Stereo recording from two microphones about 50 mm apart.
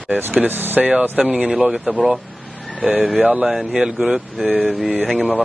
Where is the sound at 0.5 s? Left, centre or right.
Right.